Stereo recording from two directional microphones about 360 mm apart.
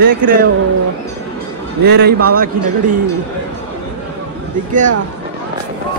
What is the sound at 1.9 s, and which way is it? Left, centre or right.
Speech, right.